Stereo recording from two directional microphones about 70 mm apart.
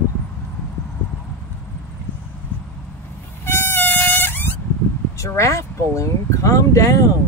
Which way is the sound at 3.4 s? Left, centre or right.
Left.